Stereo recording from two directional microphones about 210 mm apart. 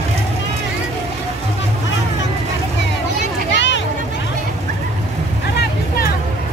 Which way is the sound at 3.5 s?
60° left (ahead or behind).